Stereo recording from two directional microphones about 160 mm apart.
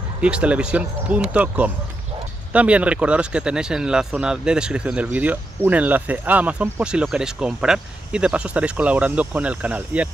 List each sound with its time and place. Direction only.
0.2 s speech: 5° right (ahead or behind)